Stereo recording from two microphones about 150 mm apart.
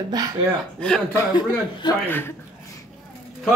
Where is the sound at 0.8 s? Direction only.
5° left (ahead or behind).